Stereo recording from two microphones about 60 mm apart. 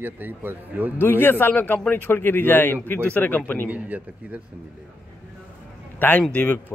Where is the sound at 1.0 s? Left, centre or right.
Left.